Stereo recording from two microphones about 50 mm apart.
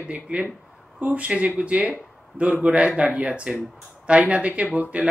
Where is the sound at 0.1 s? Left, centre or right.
Right.